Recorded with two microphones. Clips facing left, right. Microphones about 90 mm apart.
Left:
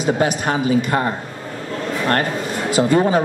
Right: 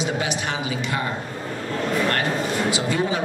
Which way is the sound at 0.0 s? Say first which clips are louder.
Left 7 dB; 45° left (ahead or behind).